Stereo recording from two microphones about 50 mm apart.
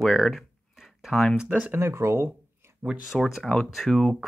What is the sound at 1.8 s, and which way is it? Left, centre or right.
Speech, right.